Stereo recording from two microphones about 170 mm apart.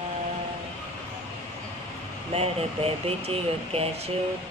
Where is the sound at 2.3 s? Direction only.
35° right (ahead or behind).